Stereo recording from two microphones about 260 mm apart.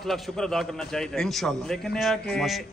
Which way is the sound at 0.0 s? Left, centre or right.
Centre.